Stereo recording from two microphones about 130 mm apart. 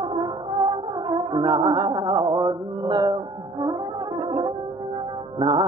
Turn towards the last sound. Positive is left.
turn(degrees=-35)  # may be behind; listen again after turning